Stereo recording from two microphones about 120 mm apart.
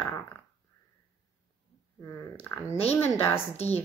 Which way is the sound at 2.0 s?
25° left (ahead or behind).